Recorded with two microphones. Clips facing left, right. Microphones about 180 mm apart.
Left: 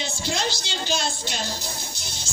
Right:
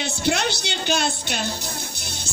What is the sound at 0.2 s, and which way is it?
A woman's voice, 60° right (ahead or behind).